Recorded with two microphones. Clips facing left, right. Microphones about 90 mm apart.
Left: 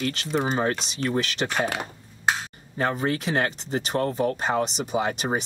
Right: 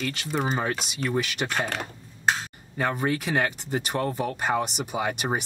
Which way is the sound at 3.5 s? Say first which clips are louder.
Left 2 dB; 5° right (ahead or behind).